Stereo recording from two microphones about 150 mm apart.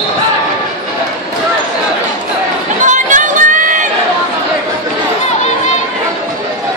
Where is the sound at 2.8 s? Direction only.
60° right (ahead or behind).